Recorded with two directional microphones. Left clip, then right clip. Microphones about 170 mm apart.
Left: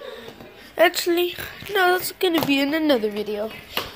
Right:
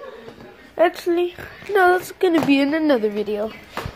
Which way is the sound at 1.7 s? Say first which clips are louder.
Right 3 dB; 25° right (ahead or behind).